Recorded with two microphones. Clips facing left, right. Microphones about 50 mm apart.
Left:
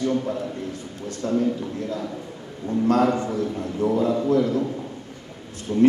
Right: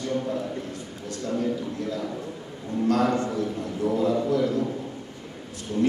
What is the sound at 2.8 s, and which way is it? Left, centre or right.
Speech, left.